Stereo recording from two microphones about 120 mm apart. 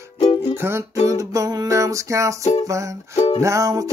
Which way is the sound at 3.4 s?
25° right (ahead or behind).